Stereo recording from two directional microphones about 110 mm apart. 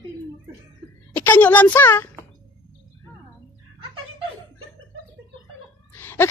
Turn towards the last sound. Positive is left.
turn(degrees=20)  # may be behind; listen again after turning